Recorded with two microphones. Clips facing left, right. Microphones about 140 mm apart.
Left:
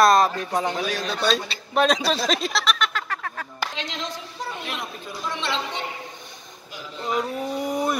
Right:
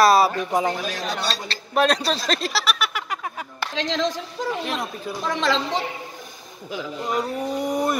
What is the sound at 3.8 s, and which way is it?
Speech, 90° right.